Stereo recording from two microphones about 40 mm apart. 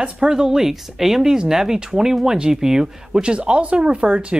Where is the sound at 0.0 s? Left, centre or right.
Centre.